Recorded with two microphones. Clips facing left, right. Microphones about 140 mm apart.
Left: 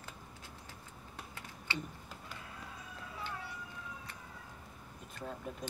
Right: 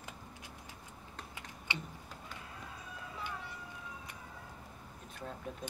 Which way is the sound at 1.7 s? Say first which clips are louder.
Left 2 dB; 15° right (ahead or behind).